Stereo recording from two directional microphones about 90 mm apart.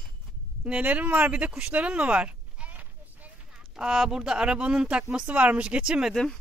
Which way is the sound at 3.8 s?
5° right (ahead or behind).